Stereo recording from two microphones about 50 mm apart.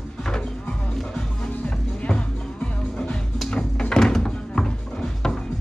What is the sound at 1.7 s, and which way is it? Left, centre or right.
Music, centre.